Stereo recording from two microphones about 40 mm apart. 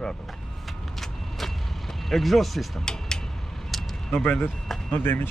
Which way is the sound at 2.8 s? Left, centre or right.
Centre.